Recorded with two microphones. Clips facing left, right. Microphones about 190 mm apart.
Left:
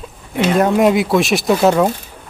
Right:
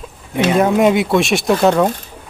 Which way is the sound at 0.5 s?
Centre (ahead or behind).